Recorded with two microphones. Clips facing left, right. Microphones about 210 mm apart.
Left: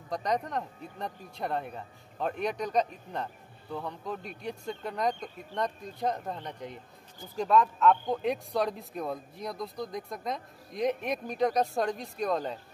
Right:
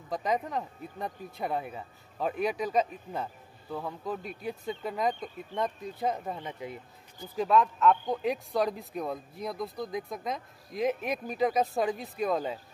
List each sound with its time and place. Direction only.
0.1 s speech: 5° right (ahead or behind)